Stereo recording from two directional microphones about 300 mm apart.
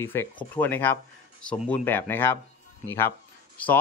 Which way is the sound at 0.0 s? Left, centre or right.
Centre.